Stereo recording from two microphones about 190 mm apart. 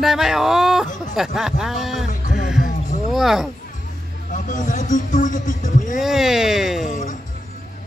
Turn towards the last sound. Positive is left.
turn(degrees=40)  # may be behind; listen again after turning